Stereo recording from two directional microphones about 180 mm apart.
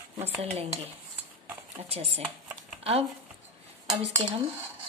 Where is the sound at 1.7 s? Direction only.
35° right (ahead or behind).